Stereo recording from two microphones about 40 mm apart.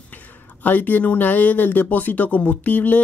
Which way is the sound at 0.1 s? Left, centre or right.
Left.